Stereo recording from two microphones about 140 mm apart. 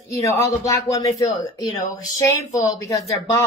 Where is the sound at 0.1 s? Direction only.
20° left (ahead or behind).